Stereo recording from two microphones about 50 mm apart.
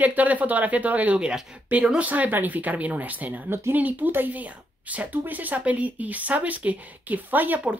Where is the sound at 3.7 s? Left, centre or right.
Right.